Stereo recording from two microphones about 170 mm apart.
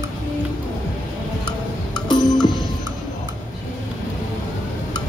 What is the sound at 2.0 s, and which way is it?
Music, 25° left (ahead or behind).